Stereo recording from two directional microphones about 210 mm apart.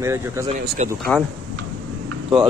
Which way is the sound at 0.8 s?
30° right (ahead or behind).